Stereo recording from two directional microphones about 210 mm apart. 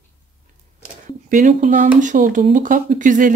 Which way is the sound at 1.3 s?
35° right (ahead or behind).